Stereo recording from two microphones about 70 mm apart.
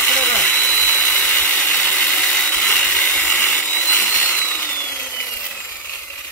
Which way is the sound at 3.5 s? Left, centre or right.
Centre.